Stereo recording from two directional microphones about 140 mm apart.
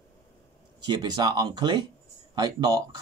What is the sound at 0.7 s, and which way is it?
Speech, 30° right (ahead or behind).